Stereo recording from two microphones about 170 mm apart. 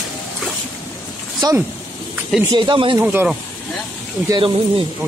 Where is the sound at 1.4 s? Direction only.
25° right (ahead or behind).